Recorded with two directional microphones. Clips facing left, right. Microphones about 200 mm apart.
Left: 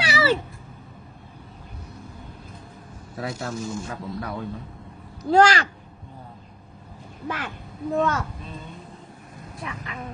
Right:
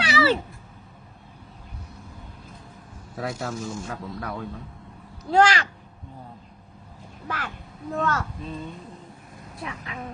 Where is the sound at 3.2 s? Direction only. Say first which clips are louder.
Even; centre (ahead or behind).